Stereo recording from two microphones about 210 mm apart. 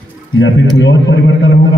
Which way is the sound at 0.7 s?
55° left (ahead or behind).